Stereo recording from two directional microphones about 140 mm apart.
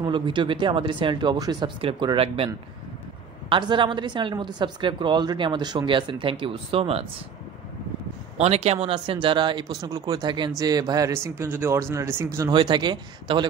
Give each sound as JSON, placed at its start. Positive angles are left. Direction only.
{"t": 0.0, "sound": "speech", "side_deg": -35}
{"t": 8.4, "sound": "speech", "side_deg": -50}
{"t": 12.4, "sound": "speech", "side_deg": -30}